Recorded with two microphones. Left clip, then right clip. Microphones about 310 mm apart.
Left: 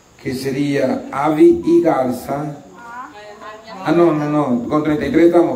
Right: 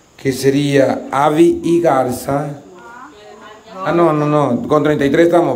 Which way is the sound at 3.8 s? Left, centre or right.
Centre.